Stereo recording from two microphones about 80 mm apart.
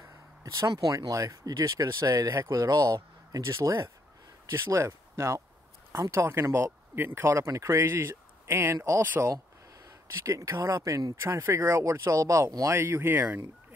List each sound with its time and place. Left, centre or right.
0.0 s speech: right
9.2 s speech: right
9.8 s speech: right
12.7 s speech: right